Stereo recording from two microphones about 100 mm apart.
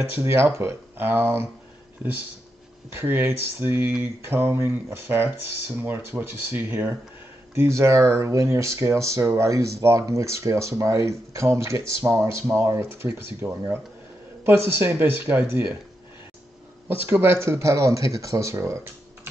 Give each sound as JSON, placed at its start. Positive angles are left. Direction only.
{"t": 0.1, "sound": "speech", "side_deg": -25}
{"t": 2.9, "sound": "speech", "side_deg": -25}
{"t": 16.8, "sound": "speech", "side_deg": -20}